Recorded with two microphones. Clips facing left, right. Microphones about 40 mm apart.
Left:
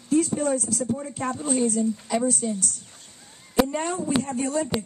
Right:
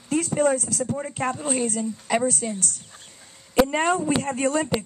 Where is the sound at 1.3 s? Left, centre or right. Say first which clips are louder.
Left 3 dB; right.